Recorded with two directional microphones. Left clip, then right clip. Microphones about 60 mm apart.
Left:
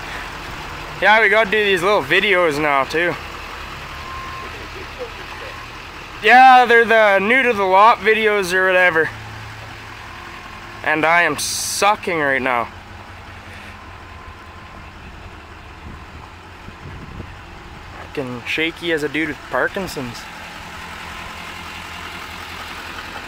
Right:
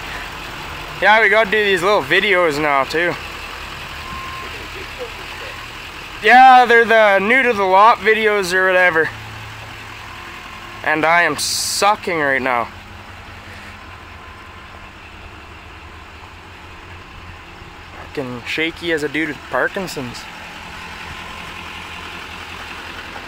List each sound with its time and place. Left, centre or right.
0.0 s speech: centre
3.2 s vehicle: right
10.8 s speech: centre
18.4 s speech: centre
21.6 s vehicle: left